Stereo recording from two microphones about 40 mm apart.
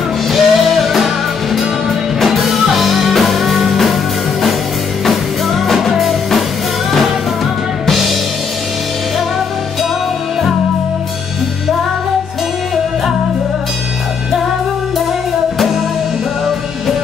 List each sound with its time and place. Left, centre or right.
0.3 s music: centre
5.0 s music: centre
7.8 s music: centre